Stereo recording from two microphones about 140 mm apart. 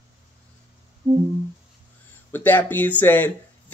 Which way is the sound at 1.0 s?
30° right (ahead or behind).